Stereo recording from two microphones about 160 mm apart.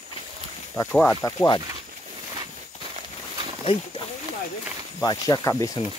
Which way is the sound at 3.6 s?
35° left (ahead or behind).